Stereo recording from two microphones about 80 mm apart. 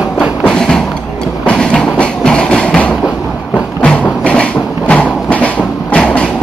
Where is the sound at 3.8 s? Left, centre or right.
Centre.